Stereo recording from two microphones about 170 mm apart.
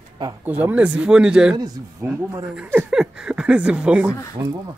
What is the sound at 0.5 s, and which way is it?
Speech, 10° right (ahead or behind).